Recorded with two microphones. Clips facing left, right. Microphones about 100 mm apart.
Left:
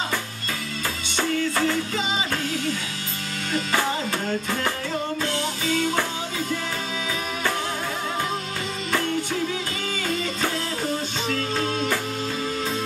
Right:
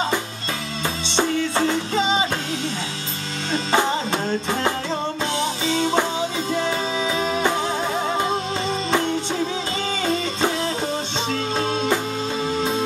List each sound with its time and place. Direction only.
1.0 s music: 25° right (ahead or behind)
3.5 s music: 20° right (ahead or behind)
11.2 s music: 25° right (ahead or behind)